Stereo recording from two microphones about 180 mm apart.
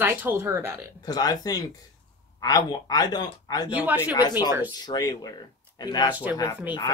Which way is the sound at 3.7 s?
10° right (ahead or behind).